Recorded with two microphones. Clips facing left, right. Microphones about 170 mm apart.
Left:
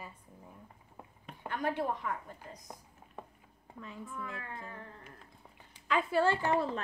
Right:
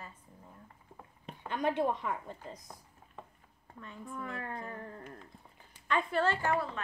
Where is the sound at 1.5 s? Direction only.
20° right (ahead or behind).